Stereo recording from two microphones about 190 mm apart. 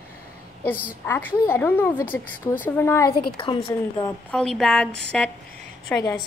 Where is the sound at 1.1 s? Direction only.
10° left (ahead or behind).